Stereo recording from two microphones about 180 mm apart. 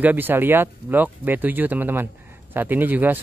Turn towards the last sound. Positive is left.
turn(degrees=-10)  # may be behind; listen again after turning